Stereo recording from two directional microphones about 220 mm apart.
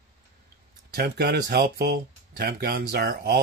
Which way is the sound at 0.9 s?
45° right (ahead or behind).